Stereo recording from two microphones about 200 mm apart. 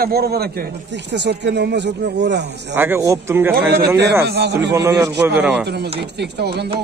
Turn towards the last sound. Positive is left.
turn(degrees=-55)  # may be behind; listen again after turning